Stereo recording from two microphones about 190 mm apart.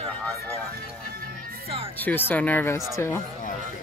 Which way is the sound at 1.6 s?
30° right (ahead or behind).